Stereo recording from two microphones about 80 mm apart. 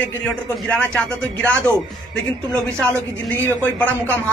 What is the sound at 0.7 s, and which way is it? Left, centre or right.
Speech, centre.